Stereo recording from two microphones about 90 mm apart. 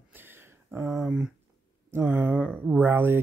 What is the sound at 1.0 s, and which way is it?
Speech, 10° right (ahead or behind).